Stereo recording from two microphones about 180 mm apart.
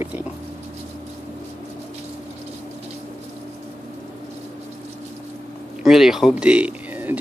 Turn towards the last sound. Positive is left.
turn(degrees=-10)  # may be behind; listen again after turning